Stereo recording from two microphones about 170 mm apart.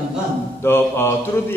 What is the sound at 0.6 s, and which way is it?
Speech, 15° left (ahead or behind).